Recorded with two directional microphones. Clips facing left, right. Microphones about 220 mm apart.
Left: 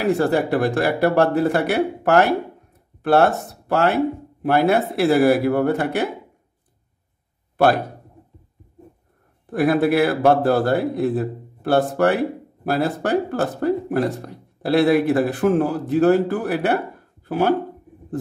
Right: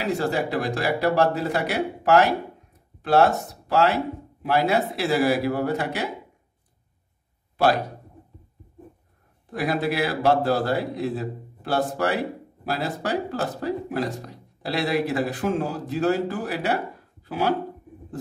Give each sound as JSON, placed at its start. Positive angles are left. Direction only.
{"t": 0.1, "sound": "speech", "side_deg": 55}
{"t": 7.5, "sound": "speech", "side_deg": 55}
{"t": 9.5, "sound": "speech", "side_deg": 55}